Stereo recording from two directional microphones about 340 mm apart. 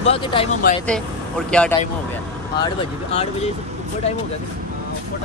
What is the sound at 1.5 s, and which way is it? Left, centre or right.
Speech, centre.